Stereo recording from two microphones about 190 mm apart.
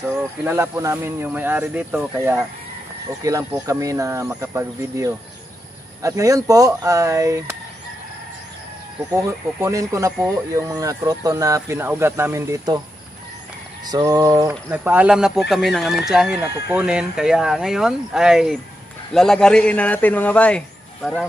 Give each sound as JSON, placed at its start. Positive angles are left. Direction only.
{"t": 0.1, "sound": "speech", "side_deg": -15}
{"t": 9.6, "sound": "speech", "side_deg": -15}
{"t": 13.8, "sound": "speech", "side_deg": -20}
{"t": 14.5, "sound": "speech", "side_deg": -5}